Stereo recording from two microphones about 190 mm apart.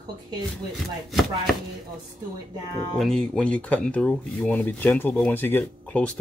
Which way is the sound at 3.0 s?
5° left (ahead or behind).